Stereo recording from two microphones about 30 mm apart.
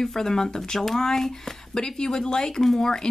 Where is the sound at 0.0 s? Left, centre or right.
Centre.